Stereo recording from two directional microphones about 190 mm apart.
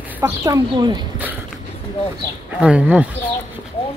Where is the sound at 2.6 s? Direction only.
5° right (ahead or behind).